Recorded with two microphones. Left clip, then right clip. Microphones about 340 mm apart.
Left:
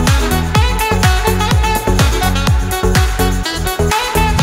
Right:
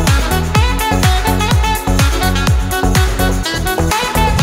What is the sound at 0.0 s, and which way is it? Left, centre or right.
Music, centre.